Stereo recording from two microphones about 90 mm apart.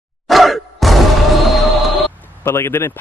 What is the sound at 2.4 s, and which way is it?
Speech, 30° left (ahead or behind).